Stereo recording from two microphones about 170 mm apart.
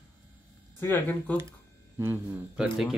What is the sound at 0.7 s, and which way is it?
Speech, 10° left (ahead or behind).